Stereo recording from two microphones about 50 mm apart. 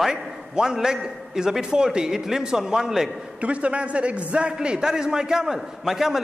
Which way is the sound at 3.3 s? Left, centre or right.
Right.